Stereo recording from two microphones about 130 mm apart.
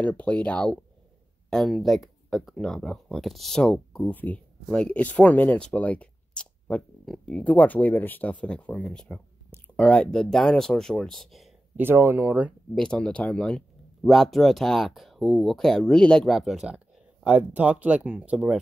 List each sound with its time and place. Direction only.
0.0 s speech: 10° left (ahead or behind)
11.7 s speech: 15° right (ahead or behind)
12.7 s speech: 5° left (ahead or behind); by 18.6 s 10° right (ahead or behind)